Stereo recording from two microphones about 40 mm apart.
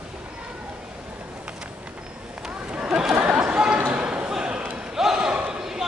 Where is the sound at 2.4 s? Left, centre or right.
Right.